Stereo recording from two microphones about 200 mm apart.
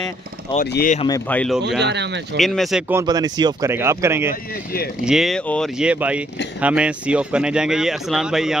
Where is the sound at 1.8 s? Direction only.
60° right (ahead or behind).